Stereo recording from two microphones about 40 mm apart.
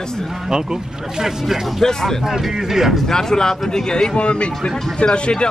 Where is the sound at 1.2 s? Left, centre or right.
Centre.